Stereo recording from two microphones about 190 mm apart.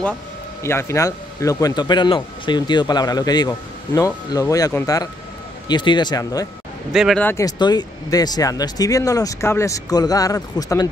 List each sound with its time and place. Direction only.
0.6 s speech: 15° left (ahead or behind)
6.9 s speech: centre (ahead or behind)
7.2 s speech: 15° left (ahead or behind)